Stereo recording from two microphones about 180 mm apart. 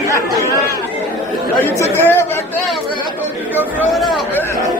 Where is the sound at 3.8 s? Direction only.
Centre (ahead or behind).